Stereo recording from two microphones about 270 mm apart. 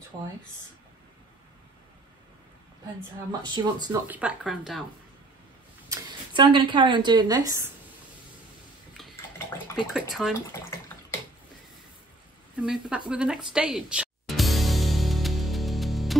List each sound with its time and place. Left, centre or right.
3.3 s speech: centre
4.2 s speech: centre
5.9 s speech: centre
8.9 s a sound: centre
9.9 s speech: centre
10.5 s bathtub: centre
12.6 s speech: centre
13.1 s music: centre